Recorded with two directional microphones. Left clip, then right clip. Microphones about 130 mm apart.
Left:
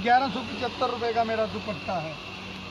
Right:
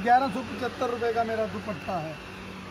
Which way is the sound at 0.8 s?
10° right (ahead or behind).